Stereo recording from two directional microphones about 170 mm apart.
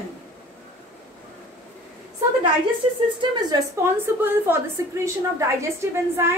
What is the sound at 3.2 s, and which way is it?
Speech, 25° right (ahead or behind).